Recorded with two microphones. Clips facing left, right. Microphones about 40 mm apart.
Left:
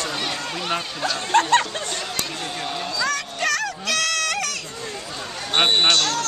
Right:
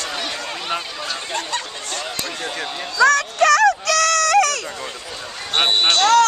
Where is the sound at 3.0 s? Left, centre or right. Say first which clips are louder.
Right 12 dB; right.